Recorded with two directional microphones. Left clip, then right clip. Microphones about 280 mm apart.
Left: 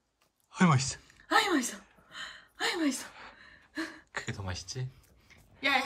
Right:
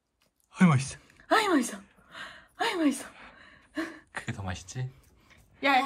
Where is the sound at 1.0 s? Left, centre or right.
Centre.